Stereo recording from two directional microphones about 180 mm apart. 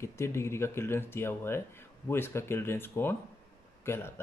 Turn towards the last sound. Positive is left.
turn(degrees=15)  # may be behind; listen again after turning